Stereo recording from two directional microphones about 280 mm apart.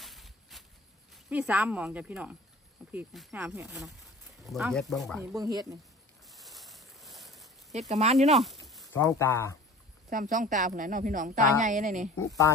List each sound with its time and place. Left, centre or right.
0.0 s a sound: centre
1.1 s speech: centre
5.3 s speech: centre
6.2 s boat: centre
7.9 s a woman's voice: right
8.6 s a sound: centre
9.0 s speech: centre
10.0 s a woman's voice: right
12.2 s speech: centre